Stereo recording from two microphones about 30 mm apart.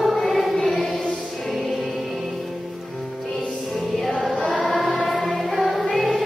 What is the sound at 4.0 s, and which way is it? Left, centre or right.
Choir, centre.